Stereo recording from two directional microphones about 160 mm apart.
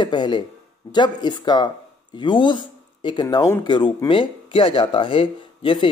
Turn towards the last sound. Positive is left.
turn(degrees=30)  # may be behind; listen again after turning